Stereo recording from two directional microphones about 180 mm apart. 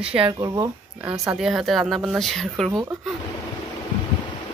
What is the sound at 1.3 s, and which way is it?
Speech, centre (ahead or behind).